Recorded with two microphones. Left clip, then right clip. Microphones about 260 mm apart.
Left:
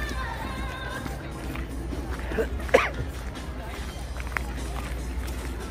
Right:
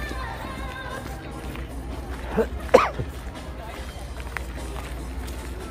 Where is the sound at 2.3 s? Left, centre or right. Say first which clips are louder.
Right 4 dB; right.